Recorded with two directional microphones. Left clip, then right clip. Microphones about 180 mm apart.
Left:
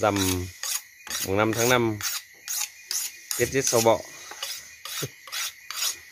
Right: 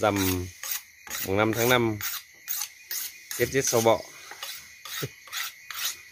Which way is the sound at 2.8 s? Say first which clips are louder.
Left 5 dB; 30° left (ahead or behind).